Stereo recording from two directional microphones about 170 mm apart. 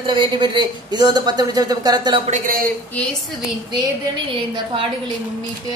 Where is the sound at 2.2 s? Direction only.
45° right (ahead or behind).